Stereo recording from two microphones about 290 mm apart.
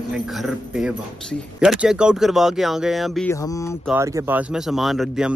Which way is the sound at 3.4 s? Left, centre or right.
Centre.